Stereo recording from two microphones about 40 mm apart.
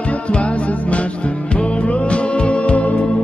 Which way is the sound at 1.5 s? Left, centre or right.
Left.